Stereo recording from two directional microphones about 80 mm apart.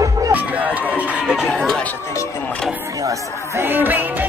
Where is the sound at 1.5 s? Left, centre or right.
Centre.